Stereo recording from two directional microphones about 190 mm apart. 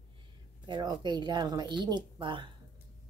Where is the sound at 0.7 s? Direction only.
20° right (ahead or behind).